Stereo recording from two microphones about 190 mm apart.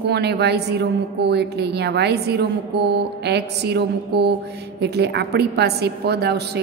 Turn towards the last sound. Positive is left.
turn(degrees=-60)  # may be behind; listen again after turning